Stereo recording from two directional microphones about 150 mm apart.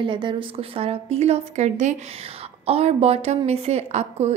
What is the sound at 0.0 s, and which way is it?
A woman's voice, 30° right (ahead or behind).